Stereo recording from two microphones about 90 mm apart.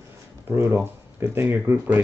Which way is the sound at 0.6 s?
30° right (ahead or behind).